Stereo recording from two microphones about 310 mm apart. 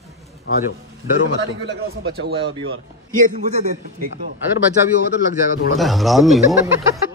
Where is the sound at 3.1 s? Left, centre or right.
Right.